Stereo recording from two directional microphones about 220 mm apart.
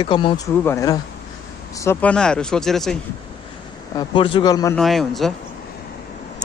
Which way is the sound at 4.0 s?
20° left (ahead or behind).